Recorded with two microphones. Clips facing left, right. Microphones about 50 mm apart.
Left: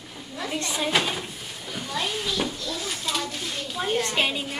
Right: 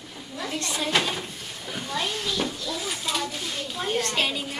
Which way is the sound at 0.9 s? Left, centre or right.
Centre.